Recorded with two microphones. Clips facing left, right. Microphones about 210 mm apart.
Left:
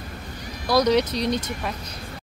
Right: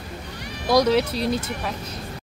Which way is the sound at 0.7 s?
5° right (ahead or behind).